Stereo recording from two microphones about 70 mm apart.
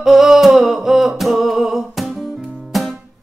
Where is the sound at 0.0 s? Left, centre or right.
Centre.